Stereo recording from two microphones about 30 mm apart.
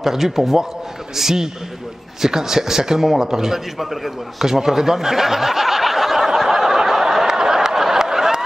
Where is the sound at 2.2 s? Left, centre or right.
Centre.